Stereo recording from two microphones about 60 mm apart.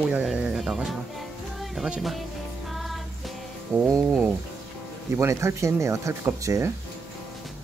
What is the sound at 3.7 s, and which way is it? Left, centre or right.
Speech, right.